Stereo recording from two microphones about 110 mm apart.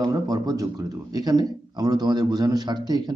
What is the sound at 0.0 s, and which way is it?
A man's voice, 35° right (ahead or behind).